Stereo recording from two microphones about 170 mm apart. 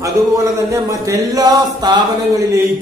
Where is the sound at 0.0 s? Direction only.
20° right (ahead or behind).